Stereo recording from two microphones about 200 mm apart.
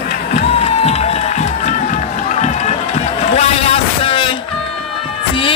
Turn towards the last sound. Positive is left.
turn(degrees=25)  # may be behind; listen again after turning